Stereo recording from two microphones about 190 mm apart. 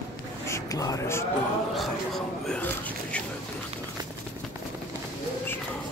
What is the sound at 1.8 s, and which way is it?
Speech, centre (ahead or behind).